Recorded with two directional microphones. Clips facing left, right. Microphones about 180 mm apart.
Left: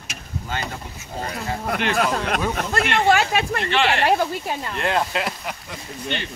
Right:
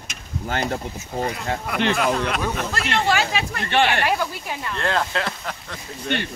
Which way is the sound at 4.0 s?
35° left (ahead or behind).